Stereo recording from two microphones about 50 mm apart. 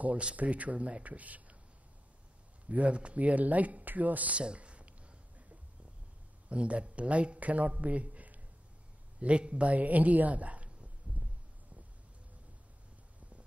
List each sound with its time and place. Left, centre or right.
0.0 s speech: right
2.7 s speech: right
6.5 s speech: right